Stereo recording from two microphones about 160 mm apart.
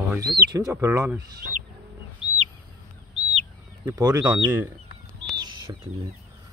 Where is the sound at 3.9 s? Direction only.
20° right (ahead or behind).